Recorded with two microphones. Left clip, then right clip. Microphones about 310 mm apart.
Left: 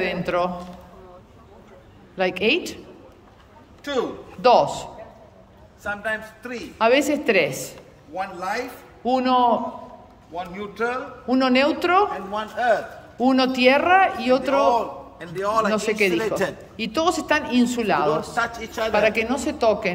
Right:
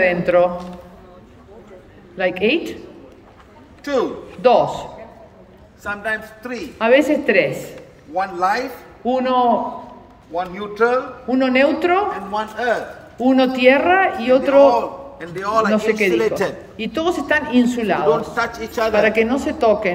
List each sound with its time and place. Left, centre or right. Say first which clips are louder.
0.0 s a woman's voice: right 8 dB; centre
2.1 s a woman's voice: right 3 dB; centre
3.8 s a man's voice: right 5 dB; centre
5.9 s a woman's voice: right 3 dB; centre
14.7 s a man's voice: right 3 dB; centre
15.7 s a woman's voice: right 4 dB; centre